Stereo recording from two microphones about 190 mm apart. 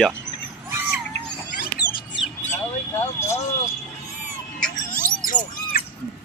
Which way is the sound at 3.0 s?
15° left (ahead or behind).